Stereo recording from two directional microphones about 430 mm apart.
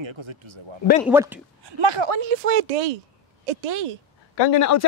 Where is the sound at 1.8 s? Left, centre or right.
Right.